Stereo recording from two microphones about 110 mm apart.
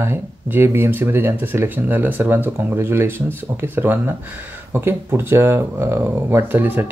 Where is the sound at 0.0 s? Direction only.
20° right (ahead or behind).